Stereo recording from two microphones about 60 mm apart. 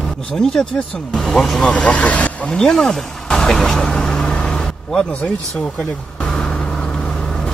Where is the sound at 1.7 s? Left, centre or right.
Centre.